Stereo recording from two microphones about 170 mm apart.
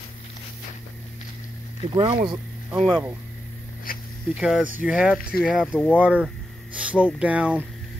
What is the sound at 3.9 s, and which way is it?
Zipper, 60° left (ahead or behind).